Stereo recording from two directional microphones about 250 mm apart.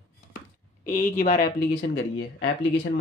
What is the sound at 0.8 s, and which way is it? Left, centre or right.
Speech, left.